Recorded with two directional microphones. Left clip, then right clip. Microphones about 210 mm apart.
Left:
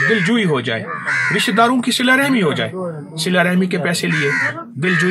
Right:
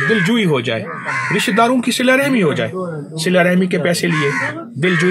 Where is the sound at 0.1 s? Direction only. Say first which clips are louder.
Right 1 dB; 20° right (ahead or behind).